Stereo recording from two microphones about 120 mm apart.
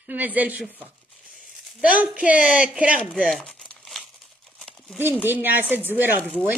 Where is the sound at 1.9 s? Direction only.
10° right (ahead or behind).